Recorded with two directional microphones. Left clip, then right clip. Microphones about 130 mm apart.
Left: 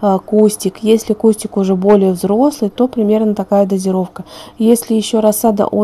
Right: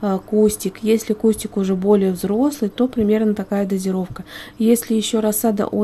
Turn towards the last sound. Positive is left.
turn(degrees=20)  # may be behind; listen again after turning